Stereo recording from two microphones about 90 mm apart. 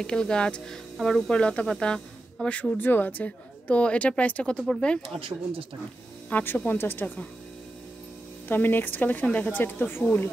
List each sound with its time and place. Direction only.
0.0 s a woman's voice: 10° left (ahead or behind)
2.8 s a woman's voice: 20° left (ahead or behind)
5.0 s speech: 90° right
6.3 s speech: 20° left (ahead or behind)
8.5 s speech: 20° left (ahead or behind)